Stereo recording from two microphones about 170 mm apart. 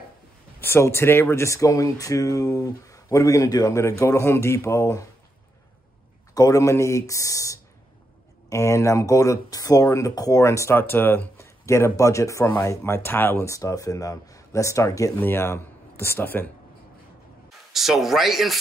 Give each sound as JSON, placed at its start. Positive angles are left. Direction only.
{"t": 0.6, "sound": "speech", "side_deg": 15}
{"t": 6.3, "sound": "speech", "side_deg": 20}
{"t": 17.7, "sound": "speech", "side_deg": 0}